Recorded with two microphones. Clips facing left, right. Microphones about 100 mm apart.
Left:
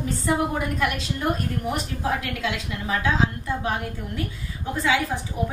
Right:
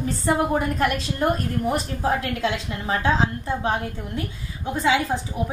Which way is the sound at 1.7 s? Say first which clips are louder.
Right 3 dB; 35° right (ahead or behind).